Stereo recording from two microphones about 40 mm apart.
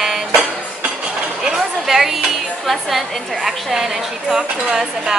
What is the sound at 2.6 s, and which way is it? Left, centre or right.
A woman's voice, centre.